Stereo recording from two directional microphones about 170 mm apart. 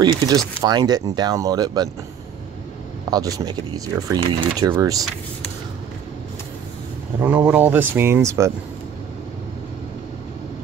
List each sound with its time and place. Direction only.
0.0 s speech: 25° right (ahead or behind)
3.1 s speech: 20° right (ahead or behind)
7.2 s speech: 10° right (ahead or behind)